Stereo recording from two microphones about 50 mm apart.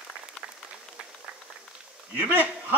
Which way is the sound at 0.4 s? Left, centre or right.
Centre.